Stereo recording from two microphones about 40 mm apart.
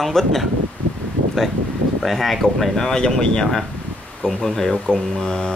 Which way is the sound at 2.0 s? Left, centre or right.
Centre.